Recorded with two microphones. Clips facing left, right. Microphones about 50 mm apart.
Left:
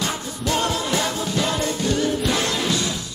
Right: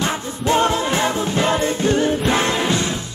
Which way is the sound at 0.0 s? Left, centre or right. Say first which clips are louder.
Right 4 dB; right.